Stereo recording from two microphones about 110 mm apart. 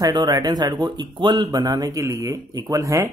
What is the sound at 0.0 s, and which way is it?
Speech, 40° right (ahead or behind).